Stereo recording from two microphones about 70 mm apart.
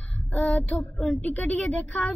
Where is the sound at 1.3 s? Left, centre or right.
Left.